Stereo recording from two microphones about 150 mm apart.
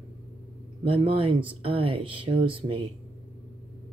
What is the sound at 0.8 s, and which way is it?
Speech, 40° right (ahead or behind).